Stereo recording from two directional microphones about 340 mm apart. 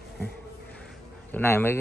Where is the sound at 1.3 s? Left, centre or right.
Centre.